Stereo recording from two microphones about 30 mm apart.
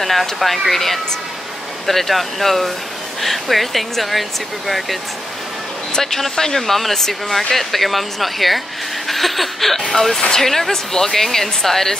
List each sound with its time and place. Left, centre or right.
0.0 s speech: centre
5.9 s speech: centre